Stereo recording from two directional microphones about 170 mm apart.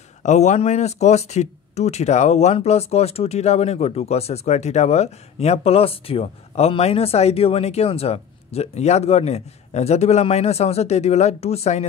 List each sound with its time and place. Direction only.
0.2 s speech: 45° left (ahead or behind)